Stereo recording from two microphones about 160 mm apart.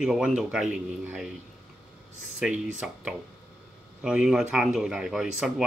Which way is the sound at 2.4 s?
5° right (ahead or behind).